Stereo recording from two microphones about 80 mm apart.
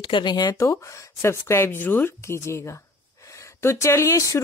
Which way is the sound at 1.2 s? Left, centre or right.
Left.